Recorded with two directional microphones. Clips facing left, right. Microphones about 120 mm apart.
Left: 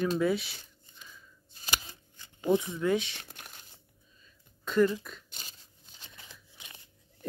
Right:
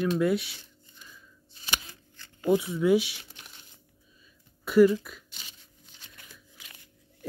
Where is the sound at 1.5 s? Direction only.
40° left (ahead or behind).